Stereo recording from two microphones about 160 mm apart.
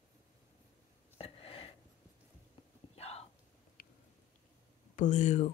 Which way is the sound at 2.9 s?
40° left (ahead or behind).